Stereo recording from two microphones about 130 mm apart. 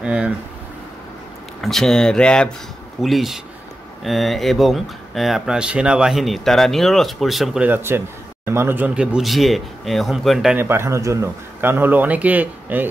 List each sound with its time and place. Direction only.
0.0 s speech: 10° right (ahead or behind)
1.6 s speech: centre (ahead or behind)
7.6 s speech: 15° right (ahead or behind)
10.6 s speech: 20° right (ahead or behind)